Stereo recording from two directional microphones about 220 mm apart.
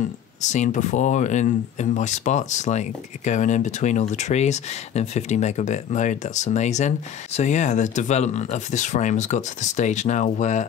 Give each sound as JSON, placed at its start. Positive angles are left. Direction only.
{"t": 0.4, "sound": "speech", "side_deg": 35}